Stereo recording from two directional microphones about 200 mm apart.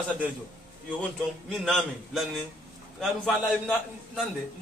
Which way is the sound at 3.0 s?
Centre (ahead or behind).